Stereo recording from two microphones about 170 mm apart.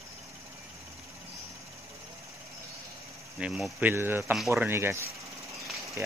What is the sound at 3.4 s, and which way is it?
Speech, 5° right (ahead or behind).